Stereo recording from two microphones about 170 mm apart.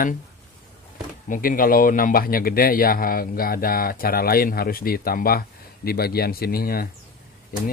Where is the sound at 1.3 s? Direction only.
55° left (ahead or behind).